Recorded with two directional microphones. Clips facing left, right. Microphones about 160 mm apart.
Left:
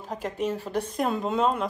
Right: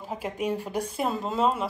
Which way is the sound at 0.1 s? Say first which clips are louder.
Even; 10° right (ahead or behind).